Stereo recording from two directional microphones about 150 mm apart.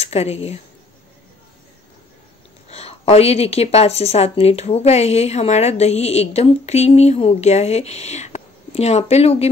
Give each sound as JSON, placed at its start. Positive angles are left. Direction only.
{"t": 0.0, "sound": "a woman's voice", "side_deg": 45}
{"t": 2.7, "sound": "a woman's voice", "side_deg": 45}